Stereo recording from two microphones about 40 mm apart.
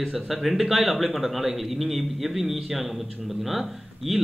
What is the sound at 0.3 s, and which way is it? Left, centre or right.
A man's voice, centre.